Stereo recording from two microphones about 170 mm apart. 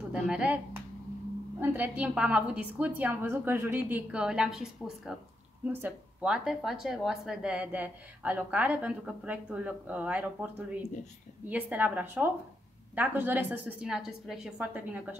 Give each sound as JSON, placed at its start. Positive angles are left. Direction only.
{"t": 0.1, "sound": "a woman's voice", "side_deg": -5}